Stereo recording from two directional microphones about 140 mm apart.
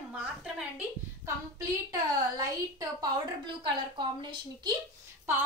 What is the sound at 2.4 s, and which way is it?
A woman's voice, 25° right (ahead or behind).